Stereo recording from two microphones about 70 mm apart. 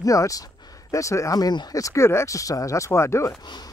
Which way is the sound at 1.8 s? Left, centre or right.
Left.